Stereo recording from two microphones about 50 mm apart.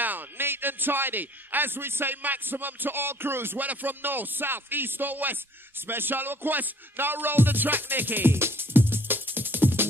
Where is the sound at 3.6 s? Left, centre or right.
Right.